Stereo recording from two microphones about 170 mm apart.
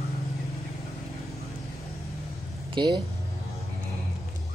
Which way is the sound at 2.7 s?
25° right (ahead or behind).